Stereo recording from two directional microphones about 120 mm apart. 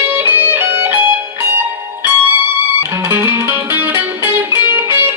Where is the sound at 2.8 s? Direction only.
20° right (ahead or behind).